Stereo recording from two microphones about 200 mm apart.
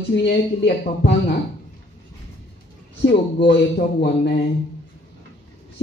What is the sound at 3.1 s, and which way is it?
Speech, 55° left (ahead or behind).